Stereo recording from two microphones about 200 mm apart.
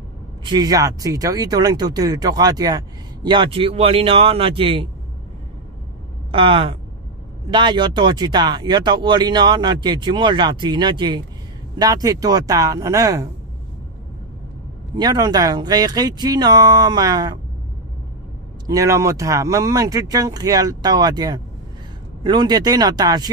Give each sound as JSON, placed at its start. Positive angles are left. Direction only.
{"t": 0.5, "sound": "speech", "side_deg": -20}
{"t": 6.3, "sound": "speech", "side_deg": -25}
{"t": 15.0, "sound": "speech", "side_deg": -20}
{"t": 18.7, "sound": "speech", "side_deg": -15}